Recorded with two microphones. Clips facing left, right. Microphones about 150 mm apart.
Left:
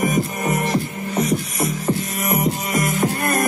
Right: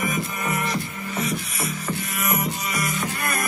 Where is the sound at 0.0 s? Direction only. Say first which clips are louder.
Left 6 dB; 40° left (ahead or behind).